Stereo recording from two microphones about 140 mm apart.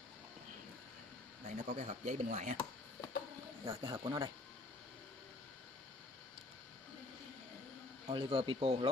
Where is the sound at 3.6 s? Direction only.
20° right (ahead or behind).